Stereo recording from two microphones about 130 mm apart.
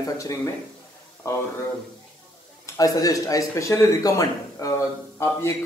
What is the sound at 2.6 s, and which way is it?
Speech, 25° left (ahead or behind).